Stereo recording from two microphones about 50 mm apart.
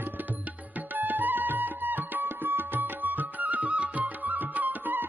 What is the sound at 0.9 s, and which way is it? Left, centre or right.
Music, right.